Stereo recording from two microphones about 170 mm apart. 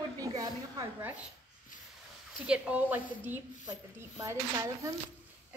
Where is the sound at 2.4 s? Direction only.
5° right (ahead or behind).